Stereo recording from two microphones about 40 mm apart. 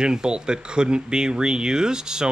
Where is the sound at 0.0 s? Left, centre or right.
Centre.